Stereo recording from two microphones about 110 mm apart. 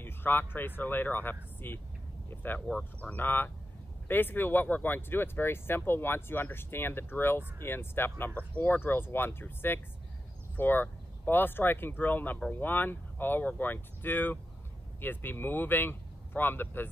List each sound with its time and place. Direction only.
0.0 s speech: 20° left (ahead or behind)